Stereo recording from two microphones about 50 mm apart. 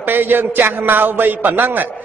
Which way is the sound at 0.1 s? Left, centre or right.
Right.